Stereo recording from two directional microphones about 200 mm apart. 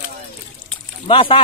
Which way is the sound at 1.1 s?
25° left (ahead or behind).